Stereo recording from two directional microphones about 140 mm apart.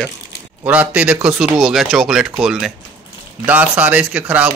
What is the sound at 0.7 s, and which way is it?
A man's voice, 10° right (ahead or behind).